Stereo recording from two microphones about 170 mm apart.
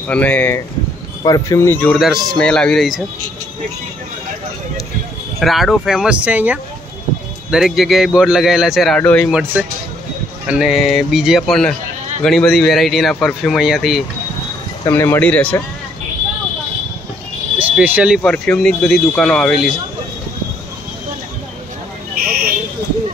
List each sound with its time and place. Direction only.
0.1 s speech: 10° left (ahead or behind)
1.2 s speech: 20° left (ahead or behind)
2.0 s speech: centre (ahead or behind)
5.4 s speech: centre (ahead or behind)
9.3 s speech: 5° right (ahead or behind)
14.9 s speech: 15° left (ahead or behind)
17.6 s speech: 10° right (ahead or behind)